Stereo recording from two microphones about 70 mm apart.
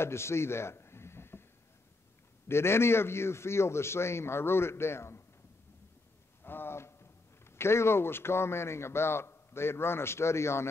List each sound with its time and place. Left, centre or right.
0.0 s a sound: left
2.4 s a man's voice: left
6.4 s a man's voice: left